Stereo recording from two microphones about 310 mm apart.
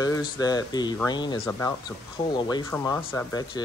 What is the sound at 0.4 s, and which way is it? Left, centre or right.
Speech, centre.